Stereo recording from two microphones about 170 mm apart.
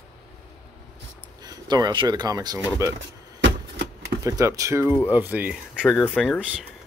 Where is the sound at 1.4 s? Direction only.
20° right (ahead or behind).